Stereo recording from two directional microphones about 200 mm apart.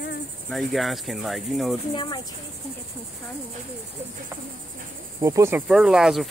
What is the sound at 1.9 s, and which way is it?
Cricket, 25° left (ahead or behind).